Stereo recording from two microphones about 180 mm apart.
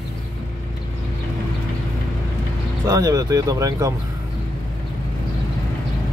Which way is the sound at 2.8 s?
20° right (ahead or behind).